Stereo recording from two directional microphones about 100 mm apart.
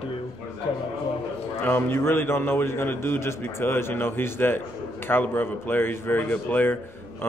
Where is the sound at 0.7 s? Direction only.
60° left (ahead or behind).